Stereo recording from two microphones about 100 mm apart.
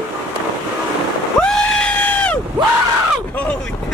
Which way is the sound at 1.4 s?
5° left (ahead or behind).